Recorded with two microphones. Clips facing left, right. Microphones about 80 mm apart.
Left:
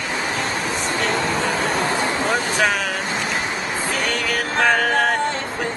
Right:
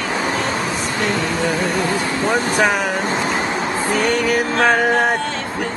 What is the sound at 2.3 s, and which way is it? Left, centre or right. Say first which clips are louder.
Speech: right 4 dB; right.